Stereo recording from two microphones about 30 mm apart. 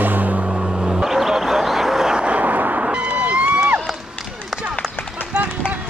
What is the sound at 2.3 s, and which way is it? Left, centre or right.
Honk, right.